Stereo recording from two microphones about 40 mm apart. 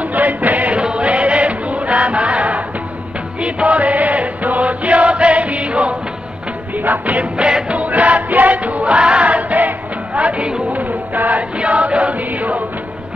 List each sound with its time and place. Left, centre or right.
0.1 s chant: right
0.7 s music: right
3.4 s chant: right
6.8 s music: right
7.3 s music: right
10.7 s chant: right
11.6 s chant: right